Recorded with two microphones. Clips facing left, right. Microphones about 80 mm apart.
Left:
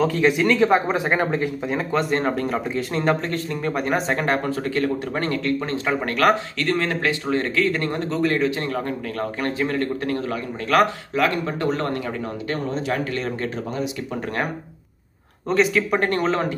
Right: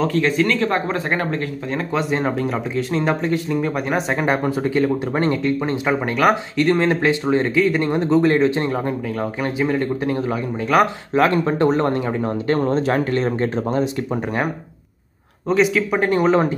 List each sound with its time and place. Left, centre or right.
0.0 s speech: centre
1.9 s speech: centre
6.7 s speech: right
9.2 s speech: centre
11.1 s speech: right
12.4 s speech: right
15.4 s speech: centre